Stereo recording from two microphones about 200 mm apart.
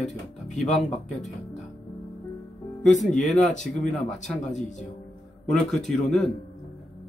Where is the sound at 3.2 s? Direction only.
35° left (ahead or behind).